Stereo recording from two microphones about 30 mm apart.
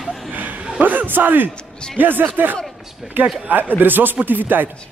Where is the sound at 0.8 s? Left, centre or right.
Right.